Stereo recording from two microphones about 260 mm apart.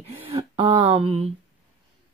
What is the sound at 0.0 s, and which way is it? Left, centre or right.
Speech, right.